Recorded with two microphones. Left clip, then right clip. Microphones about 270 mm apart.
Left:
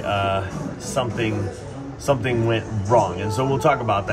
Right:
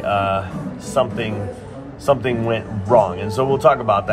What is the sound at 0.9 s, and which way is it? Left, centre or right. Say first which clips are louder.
Speech: right 4 dB; right.